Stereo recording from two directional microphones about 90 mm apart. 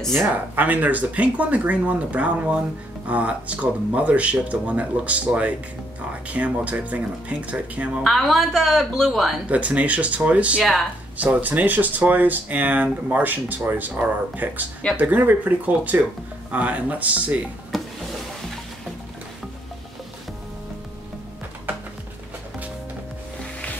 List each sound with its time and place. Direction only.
0.0 s speech: 5° left (ahead or behind)
0.6 s speech: 20° right (ahead or behind)
8.0 s speech: centre (ahead or behind)
9.5 s speech: 15° right (ahead or behind)
17.7 s a sound: centre (ahead or behind)